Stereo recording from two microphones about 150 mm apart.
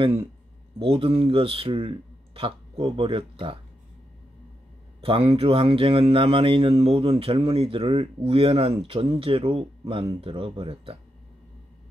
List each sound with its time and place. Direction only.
0.0 s speech: 40° right (ahead or behind)
5.0 s speech: 35° right (ahead or behind)